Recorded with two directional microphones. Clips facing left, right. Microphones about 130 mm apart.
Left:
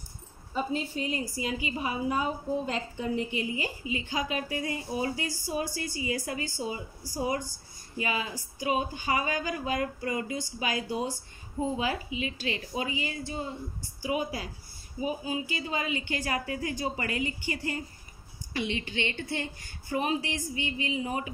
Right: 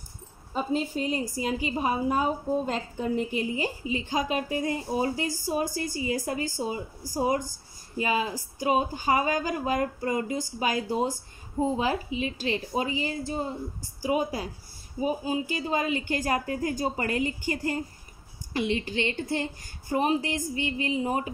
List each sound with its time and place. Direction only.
0.5 s a woman's voice: 40° right (ahead or behind)